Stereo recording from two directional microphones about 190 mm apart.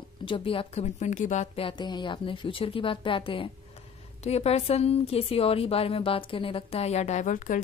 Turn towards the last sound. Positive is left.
turn(degrees=40)  # may be behind; listen again after turning